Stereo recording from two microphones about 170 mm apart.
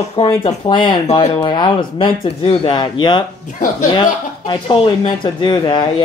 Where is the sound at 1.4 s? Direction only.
25° left (ahead or behind).